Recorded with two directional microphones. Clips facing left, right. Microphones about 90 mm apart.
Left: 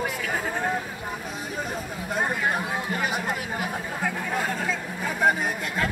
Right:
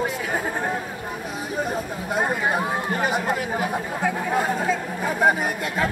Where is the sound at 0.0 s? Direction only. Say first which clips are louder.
Right 3 dB; 20° right (ahead or behind).